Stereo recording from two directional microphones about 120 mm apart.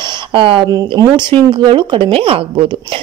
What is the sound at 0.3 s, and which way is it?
A woman's voice, 45° right (ahead or behind).